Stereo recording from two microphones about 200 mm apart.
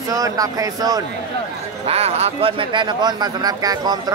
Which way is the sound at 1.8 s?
30° right (ahead or behind).